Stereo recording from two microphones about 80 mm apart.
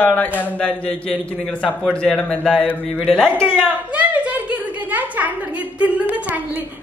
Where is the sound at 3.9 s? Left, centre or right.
Centre.